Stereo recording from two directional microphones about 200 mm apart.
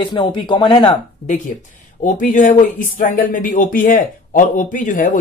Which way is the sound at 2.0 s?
40° left (ahead or behind).